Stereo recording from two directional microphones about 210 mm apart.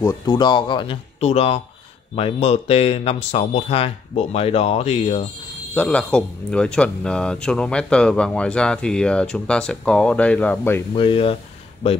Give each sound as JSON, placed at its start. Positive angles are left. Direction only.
{"t": 0.0, "sound": "speech", "side_deg": 20}
{"t": 5.8, "sound": "speech", "side_deg": 5}
{"t": 11.0, "sound": "speech", "side_deg": 25}